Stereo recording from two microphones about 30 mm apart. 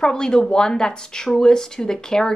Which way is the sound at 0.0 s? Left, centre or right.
Left.